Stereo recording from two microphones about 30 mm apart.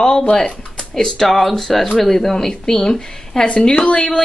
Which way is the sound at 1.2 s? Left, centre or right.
Centre.